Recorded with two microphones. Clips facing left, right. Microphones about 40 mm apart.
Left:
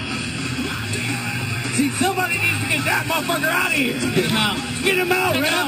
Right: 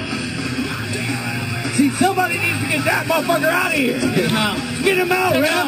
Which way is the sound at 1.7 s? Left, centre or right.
Left.